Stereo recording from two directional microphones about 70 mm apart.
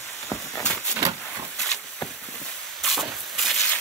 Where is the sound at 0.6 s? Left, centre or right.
Centre.